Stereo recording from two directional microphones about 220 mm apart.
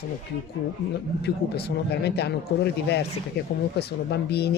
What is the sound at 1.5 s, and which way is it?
Speech, 45° left (ahead or behind).